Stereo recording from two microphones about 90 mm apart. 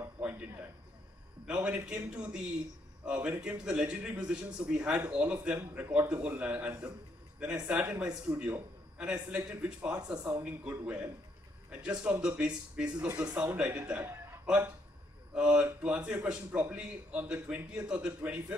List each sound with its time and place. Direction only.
1.5 s a man's voice: 15° right (ahead or behind)
15.3 s a man's voice: 10° right (ahead or behind)